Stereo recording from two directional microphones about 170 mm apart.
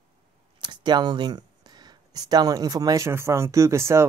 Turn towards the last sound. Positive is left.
turn(degrees=-15)  # may be behind; listen again after turning